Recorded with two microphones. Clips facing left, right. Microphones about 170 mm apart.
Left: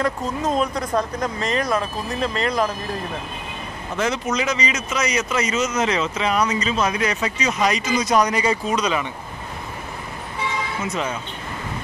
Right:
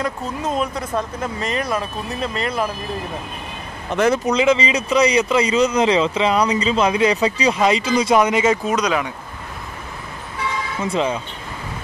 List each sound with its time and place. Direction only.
0.0 s speech: 5° right (ahead or behind)
2.4 s speech: 10° right (ahead or behind)
3.9 s speech: 60° right (ahead or behind)
4.3 s speech: 25° right (ahead or behind)
8.6 s speech: 10° right (ahead or behind)
10.8 s speech: 30° right (ahead or behind)